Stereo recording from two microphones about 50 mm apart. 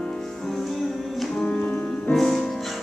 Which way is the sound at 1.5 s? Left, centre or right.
Left.